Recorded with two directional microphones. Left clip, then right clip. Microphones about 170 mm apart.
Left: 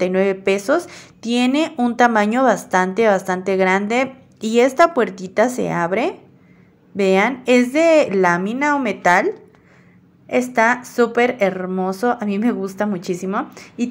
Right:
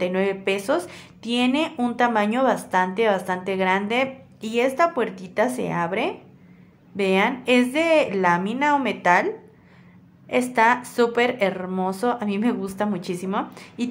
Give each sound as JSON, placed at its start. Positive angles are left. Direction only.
{"t": 0.0, "sound": "speech", "side_deg": 25}